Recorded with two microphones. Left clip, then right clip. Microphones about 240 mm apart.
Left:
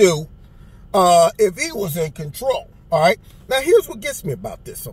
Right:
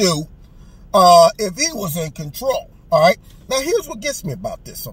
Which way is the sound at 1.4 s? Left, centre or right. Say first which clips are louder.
Left 3 dB; centre.